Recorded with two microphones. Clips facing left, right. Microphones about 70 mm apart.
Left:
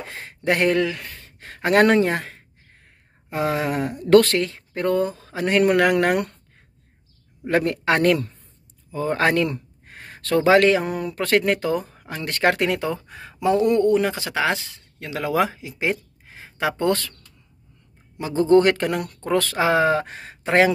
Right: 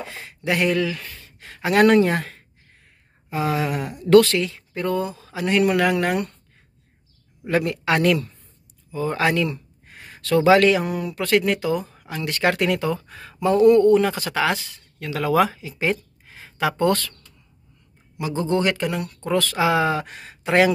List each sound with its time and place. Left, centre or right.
0.1 s speech: left
2.8 s speech: left
7.4 s speech: left
8.9 s a sound: left
10.3 s speech: left
18.1 s speech: left
19.2 s speech: left